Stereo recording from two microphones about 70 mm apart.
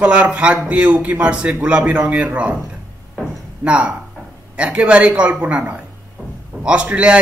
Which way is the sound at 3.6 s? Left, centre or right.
Centre.